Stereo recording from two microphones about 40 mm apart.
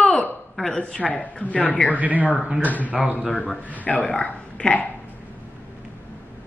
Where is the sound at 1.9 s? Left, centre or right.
Right.